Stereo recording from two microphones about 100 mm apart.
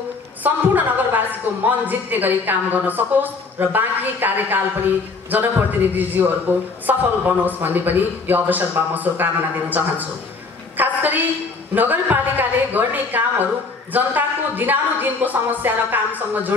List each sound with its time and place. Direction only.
0.4 s a woman's voice: 20° right (ahead or behind)
10.8 s a sound: 20° right (ahead or behind)
11.7 s a man's voice: 20° right (ahead or behind)